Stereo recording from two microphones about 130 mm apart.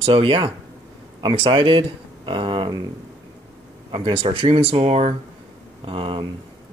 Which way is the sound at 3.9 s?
40° right (ahead or behind).